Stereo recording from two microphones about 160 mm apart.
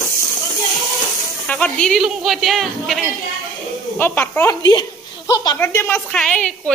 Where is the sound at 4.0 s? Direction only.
15° left (ahead or behind).